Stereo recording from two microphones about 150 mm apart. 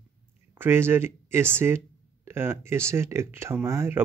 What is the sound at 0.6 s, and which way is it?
Speech, 15° right (ahead or behind).